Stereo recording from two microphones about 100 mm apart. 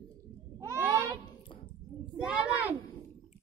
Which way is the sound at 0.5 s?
25° right (ahead or behind).